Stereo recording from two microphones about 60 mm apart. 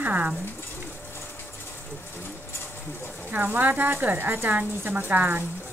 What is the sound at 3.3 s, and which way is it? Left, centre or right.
Speech, right.